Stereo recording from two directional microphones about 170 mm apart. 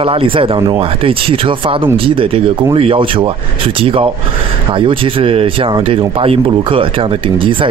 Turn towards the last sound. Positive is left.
turn(degrees=-30)  # may be behind; listen again after turning